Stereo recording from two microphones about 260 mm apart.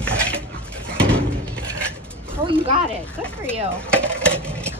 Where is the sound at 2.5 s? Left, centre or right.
Right.